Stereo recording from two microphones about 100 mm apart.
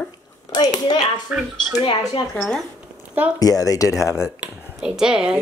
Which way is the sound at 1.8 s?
55° left (ahead or behind).